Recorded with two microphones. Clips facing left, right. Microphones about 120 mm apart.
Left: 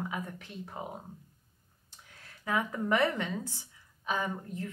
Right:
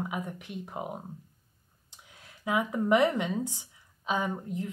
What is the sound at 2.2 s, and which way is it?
A woman's voice, 15° right (ahead or behind).